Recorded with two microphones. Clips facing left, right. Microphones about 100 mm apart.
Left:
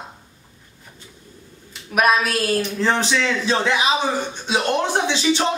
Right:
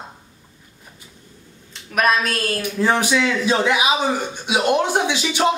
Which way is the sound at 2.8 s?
10° right (ahead or behind).